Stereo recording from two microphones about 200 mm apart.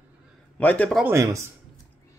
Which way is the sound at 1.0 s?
10° right (ahead or behind).